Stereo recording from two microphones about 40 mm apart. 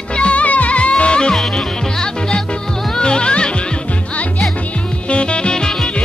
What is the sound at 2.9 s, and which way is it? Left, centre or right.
Music, left.